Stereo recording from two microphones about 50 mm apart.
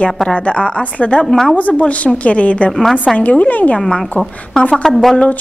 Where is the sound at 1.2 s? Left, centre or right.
Centre.